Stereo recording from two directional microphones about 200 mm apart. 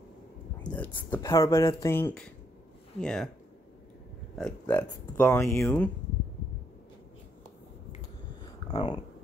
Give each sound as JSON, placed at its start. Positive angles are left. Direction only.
{"t": 0.7, "sound": "speech", "side_deg": 10}
{"t": 4.4, "sound": "speech", "side_deg": 5}
{"t": 8.6, "sound": "speech", "side_deg": 20}